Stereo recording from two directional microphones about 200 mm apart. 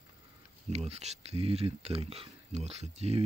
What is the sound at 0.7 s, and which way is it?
Speech, 30° right (ahead or behind).